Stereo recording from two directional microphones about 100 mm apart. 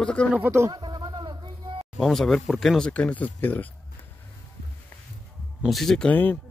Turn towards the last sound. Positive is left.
turn(degrees=20)  # may be behind; listen again after turning